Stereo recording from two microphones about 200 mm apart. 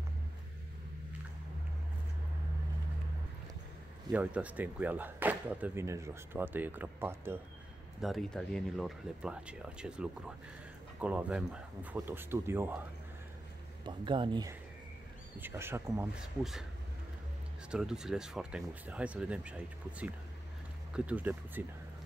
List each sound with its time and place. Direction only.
4.1 s speech: 5° right (ahead or behind)
8.0 s speech: centre (ahead or behind)
13.8 s speech: 25° right (ahead or behind)
15.3 s speech: 10° right (ahead or behind)
17.6 s speech: 5° right (ahead or behind)